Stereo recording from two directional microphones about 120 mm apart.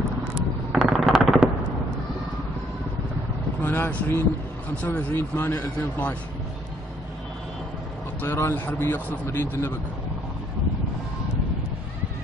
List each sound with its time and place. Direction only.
0.7 s machine gun: centre (ahead or behind)
3.6 s vehicle: 20° left (ahead or behind)
4.8 s speech: 15° left (ahead or behind)
8.2 s a man's voice: 20° left (ahead or behind)